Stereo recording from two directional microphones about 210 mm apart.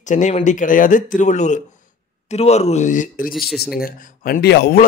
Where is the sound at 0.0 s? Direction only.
35° left (ahead or behind).